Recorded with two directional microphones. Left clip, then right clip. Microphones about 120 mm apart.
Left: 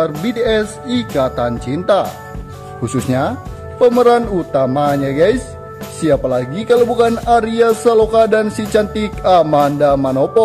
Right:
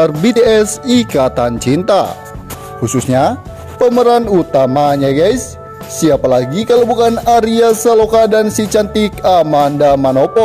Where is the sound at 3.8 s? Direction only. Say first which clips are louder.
Right 1 dB; 45° right (ahead or behind).